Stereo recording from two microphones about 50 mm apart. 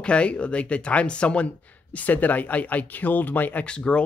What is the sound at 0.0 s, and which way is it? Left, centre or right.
Speech, left.